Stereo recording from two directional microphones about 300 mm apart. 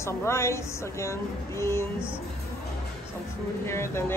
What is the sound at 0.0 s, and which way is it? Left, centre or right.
Speech, centre.